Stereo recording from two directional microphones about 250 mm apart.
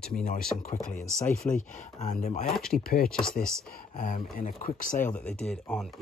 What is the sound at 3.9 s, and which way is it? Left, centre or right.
Speech, left.